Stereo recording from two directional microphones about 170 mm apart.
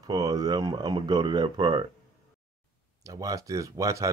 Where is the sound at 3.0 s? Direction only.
20° right (ahead or behind).